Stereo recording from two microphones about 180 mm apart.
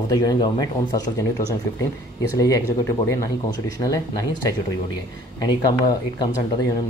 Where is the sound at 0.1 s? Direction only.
20° left (ahead or behind).